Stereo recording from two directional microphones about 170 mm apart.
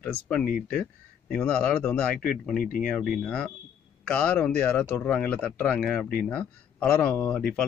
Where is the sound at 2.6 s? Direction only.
55° left (ahead or behind).